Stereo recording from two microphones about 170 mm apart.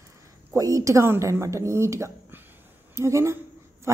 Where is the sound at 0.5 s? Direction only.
20° right (ahead or behind).